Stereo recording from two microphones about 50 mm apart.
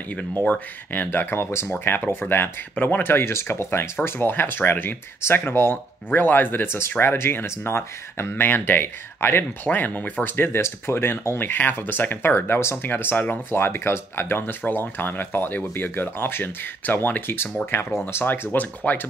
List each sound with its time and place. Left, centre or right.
0.5 s speech: left
1.3 s speech: left
1.9 s speech: left
6.0 s speech: left
8.5 s speech: left
9.7 s speech: left
10.3 s speech: left
12.8 s speech: left
13.5 s speech: left